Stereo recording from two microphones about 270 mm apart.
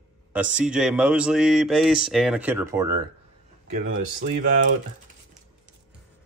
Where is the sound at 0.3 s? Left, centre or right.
Centre.